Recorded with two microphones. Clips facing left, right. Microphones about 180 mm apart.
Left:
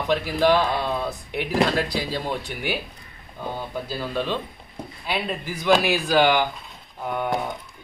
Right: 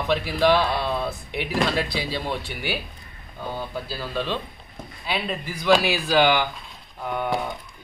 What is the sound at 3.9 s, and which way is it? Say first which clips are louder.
Speech: left 2 dB; 15° left (ahead or behind).